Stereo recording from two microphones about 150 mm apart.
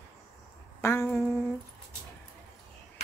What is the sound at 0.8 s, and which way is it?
Humming, 15° left (ahead or behind).